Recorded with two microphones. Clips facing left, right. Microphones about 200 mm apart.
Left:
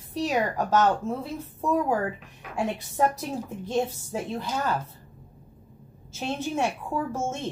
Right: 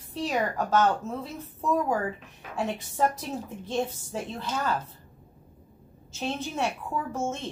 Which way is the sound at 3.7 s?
10° left (ahead or behind).